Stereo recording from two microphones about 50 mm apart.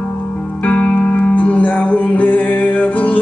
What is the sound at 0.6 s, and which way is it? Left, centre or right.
Music, left.